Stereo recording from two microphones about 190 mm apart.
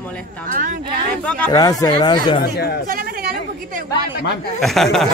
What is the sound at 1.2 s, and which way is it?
Speech, 5° left (ahead or behind).